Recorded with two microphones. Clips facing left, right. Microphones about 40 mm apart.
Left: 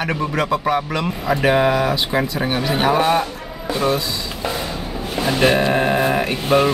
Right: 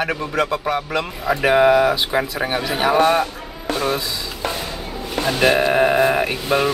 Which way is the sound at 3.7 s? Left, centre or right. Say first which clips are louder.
Even; right.